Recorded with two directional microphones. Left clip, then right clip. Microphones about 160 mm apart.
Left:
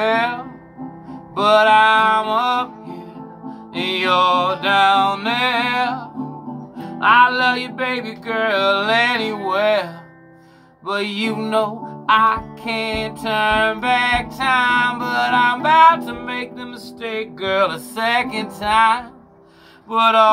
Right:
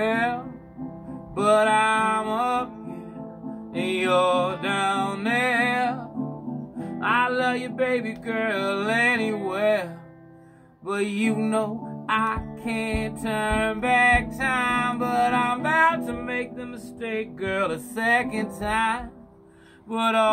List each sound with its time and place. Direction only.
0.0 s music: 15° right (ahead or behind)
3.7 s music: 15° right (ahead or behind)
10.9 s music: 20° right (ahead or behind)